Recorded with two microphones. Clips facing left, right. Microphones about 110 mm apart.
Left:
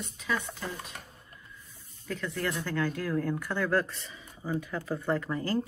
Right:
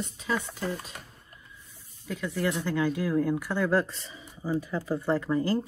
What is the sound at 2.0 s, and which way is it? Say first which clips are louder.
Speech: right 3 dB; 10° right (ahead or behind).